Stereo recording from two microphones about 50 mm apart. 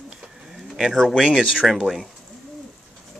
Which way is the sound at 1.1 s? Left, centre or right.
Centre.